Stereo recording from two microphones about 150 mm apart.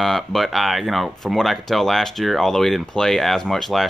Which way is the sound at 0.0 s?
Centre (ahead or behind).